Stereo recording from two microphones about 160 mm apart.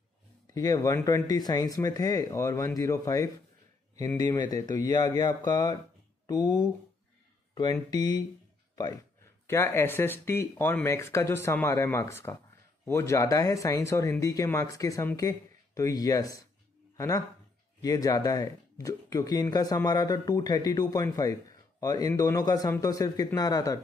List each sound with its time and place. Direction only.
0.6 s speech: 20° left (ahead or behind)
7.7 s speech: 25° left (ahead or behind)